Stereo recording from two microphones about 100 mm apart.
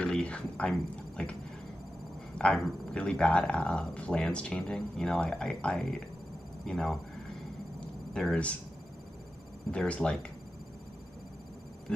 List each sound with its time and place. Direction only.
0.0 s a sound: 10° left (ahead or behind)
2.3 s speech: 10° left (ahead or behind)
8.1 s speech: centre (ahead or behind)
9.7 s speech: 10° left (ahead or behind)